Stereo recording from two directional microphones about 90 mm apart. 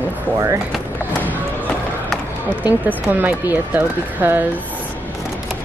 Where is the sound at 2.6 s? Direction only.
20° right (ahead or behind).